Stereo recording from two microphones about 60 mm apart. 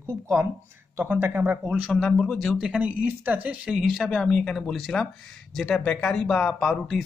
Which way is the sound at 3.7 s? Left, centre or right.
Centre.